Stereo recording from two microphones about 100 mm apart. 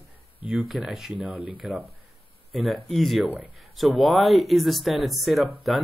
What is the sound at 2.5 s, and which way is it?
Speech, centre (ahead or behind).